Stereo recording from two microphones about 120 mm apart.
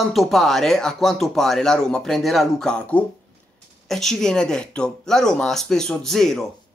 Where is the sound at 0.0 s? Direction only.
Centre (ahead or behind).